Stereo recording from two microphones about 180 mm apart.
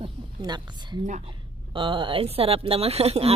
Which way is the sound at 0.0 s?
25° right (ahead or behind).